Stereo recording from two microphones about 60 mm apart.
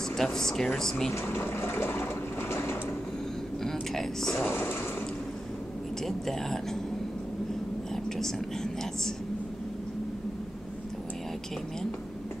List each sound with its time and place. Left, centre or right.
0.2 s speech: centre
1.1 s speech: left
2.5 s sewing machine: left
3.9 s speech: centre
4.4 s speech: left
6.0 s speech: centre